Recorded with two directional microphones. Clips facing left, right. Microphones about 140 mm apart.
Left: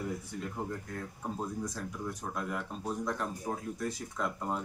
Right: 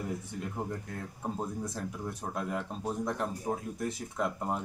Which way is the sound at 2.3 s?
25° right (ahead or behind).